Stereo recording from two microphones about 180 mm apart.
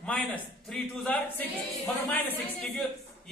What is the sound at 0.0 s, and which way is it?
A man's voice, 5° left (ahead or behind).